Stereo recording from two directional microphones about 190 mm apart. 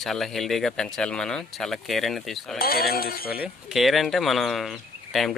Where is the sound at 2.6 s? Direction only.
50° left (ahead or behind).